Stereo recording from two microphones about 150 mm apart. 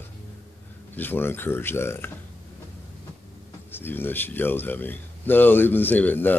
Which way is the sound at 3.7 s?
15° left (ahead or behind).